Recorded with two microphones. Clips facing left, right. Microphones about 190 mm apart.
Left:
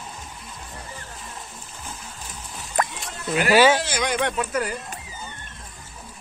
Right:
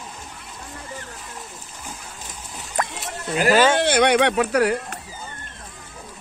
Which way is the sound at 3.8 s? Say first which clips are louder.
Right 8 dB; 65° right (ahead or behind).